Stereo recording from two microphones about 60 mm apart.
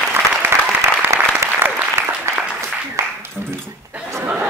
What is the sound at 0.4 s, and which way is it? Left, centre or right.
Applause, right.